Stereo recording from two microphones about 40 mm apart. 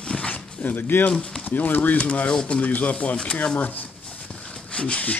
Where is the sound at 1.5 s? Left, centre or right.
Left.